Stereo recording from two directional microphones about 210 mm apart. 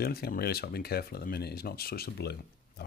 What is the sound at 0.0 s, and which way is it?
Speech, 45° left (ahead or behind).